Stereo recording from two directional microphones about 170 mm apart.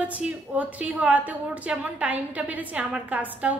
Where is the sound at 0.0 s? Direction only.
10° right (ahead or behind).